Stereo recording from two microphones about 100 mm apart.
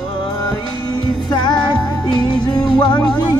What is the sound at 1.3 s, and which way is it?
Music, 45° left (ahead or behind).